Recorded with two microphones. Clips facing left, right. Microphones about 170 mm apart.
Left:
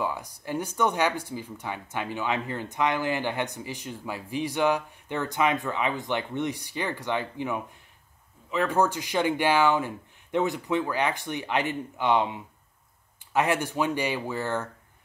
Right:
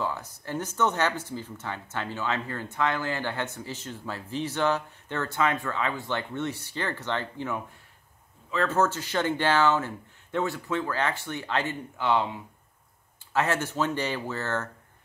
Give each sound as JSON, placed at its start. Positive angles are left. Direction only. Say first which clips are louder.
{"t": 0.0, "sound": "speech", "louder": "left 1 dB", "side_deg": 15}